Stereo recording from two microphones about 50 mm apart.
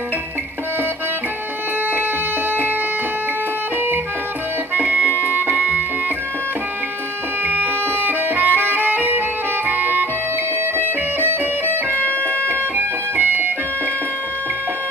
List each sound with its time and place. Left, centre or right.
4.7 s music: right
8.1 s music: right
11.1 s music: right